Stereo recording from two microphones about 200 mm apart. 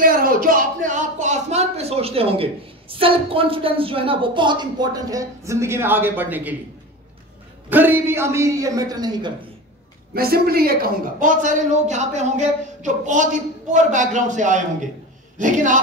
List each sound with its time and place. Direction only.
0.0 s speech: 45° right (ahead or behind); by 6.5 s 10° right (ahead or behind)
7.7 s a man's voice: 10° right (ahead or behind)
10.1 s a man's voice: 50° right (ahead or behind)